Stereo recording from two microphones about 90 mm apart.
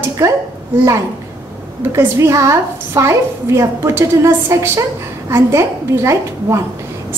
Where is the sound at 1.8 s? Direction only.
30° right (ahead or behind).